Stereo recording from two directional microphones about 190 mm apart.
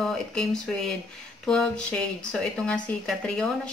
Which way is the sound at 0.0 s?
5° left (ahead or behind).